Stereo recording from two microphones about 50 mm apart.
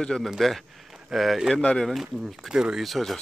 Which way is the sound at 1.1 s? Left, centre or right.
Centre.